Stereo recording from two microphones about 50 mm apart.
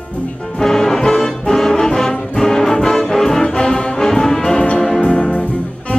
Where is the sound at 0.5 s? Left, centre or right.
Centre.